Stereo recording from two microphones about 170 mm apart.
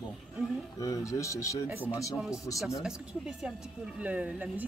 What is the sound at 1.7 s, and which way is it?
Speech, 10° right (ahead or behind).